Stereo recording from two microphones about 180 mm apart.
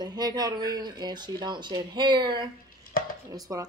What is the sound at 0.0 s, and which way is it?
Speech, 20° right (ahead or behind).